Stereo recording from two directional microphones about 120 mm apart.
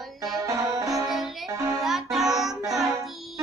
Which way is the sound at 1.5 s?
25° right (ahead or behind).